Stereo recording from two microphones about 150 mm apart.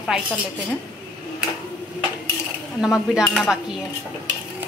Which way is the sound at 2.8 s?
5° right (ahead or behind).